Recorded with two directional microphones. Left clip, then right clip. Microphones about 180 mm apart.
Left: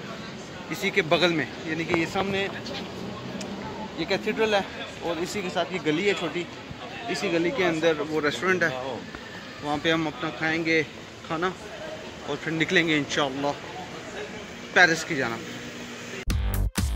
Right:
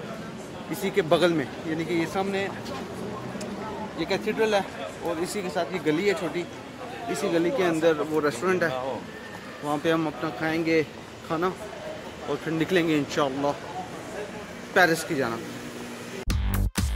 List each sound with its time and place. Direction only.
0.8 s speech: 5° right (ahead or behind)
2.0 s speech: 20° left (ahead or behind)
4.0 s speech: 25° left (ahead or behind); by 13.6 s 5° right (ahead or behind)
14.7 s speech: 5° right (ahead or behind)
16.3 s music: centre (ahead or behind)